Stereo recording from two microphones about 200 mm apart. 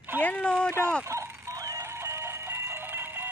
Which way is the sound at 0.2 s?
5° left (ahead or behind).